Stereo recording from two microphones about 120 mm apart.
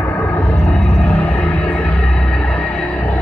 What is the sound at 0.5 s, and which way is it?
Music, centre (ahead or behind).